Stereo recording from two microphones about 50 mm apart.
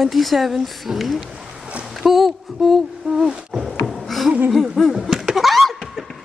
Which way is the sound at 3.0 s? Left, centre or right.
Right.